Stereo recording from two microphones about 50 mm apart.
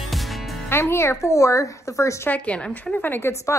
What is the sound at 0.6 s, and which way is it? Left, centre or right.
Speech, left.